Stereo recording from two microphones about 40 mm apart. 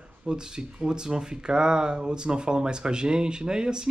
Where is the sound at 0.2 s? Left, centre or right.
Centre.